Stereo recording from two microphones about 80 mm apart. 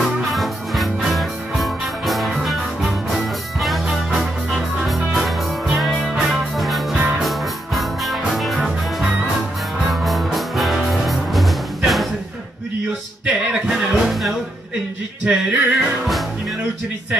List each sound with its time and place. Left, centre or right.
0.0 s music: centre
13.2 s music: centre
15.2 s music: centre